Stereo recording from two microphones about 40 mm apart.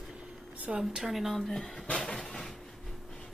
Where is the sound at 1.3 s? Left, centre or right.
Centre.